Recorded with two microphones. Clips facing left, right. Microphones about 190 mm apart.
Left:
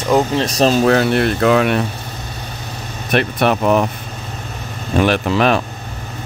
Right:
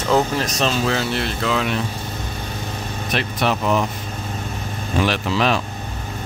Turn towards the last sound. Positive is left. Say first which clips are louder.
# left 5 dB
turn(degrees=55)  # may be behind; listen again after turning